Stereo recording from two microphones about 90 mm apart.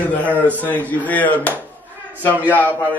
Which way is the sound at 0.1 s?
15° left (ahead or behind).